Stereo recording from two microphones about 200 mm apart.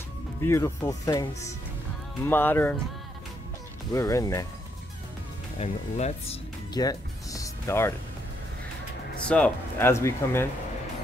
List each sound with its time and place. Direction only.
0.4 s speech: 15° left (ahead or behind)
3.9 s speech: 15° left (ahead or behind)
5.6 s speech: 35° left (ahead or behind)
6.8 s music: 15° left (ahead or behind)
9.3 s speech: 10° left (ahead or behind)